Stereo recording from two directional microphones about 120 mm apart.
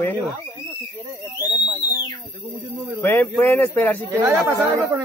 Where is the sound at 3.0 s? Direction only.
15° left (ahead or behind).